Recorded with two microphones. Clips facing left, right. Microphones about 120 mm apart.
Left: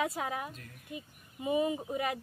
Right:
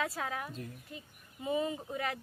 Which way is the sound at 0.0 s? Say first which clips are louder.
Left 2 dB; 20° left (ahead or behind).